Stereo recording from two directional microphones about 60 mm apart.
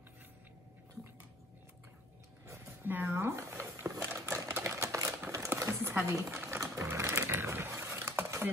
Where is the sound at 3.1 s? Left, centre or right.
Right.